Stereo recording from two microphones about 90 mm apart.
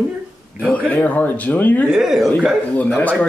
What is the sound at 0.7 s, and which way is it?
A man's voice, 20° left (ahead or behind).